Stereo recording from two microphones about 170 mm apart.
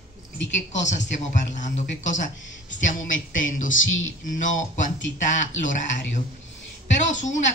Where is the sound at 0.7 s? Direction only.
45° left (ahead or behind).